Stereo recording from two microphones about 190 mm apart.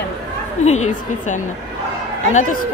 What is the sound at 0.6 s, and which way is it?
Speech, 35° left (ahead or behind).